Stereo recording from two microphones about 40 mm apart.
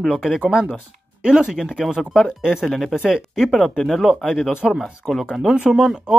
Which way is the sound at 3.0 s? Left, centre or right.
Centre.